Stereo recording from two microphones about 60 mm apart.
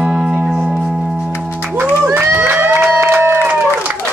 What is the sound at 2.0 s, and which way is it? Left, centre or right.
Crowd, right.